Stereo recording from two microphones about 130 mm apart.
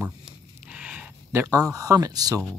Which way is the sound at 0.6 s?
10° right (ahead or behind).